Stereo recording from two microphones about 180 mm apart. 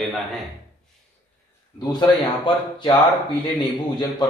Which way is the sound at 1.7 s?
25° left (ahead or behind).